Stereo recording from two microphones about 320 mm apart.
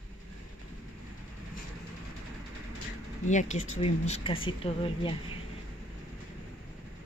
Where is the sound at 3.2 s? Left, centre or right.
Left.